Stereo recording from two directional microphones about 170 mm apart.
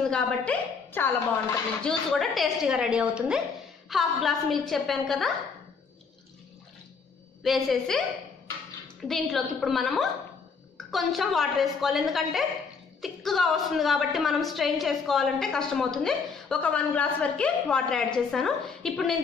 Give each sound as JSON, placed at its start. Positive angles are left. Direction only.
{"t": 0.1, "sound": "a woman's voice", "side_deg": 10}
{"t": 7.4, "sound": "a woman's voice", "side_deg": 0}